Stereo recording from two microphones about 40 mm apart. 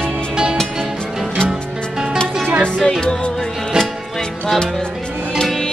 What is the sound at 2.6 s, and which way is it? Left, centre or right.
Music, centre.